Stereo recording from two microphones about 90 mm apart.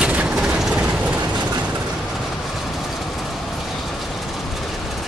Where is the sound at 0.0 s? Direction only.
15° right (ahead or behind).